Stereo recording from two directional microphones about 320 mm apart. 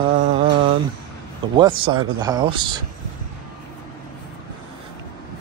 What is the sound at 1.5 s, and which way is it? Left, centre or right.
Speech, centre.